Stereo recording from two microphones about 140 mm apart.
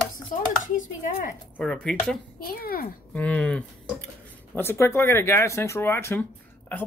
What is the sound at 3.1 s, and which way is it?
Speech, 10° left (ahead or behind).